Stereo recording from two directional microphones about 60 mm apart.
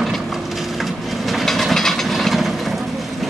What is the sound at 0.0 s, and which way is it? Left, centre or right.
Train, centre.